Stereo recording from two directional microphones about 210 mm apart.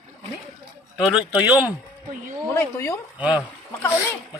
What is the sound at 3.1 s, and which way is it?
Speech, 5° right (ahead or behind).